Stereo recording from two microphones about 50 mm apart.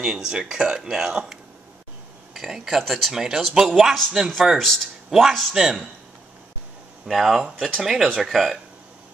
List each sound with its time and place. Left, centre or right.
0.0 s speech: centre
4.6 s speech: centre
7.1 s speech: centre